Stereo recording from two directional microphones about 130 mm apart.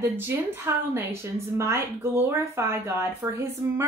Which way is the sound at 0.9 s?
20° right (ahead or behind).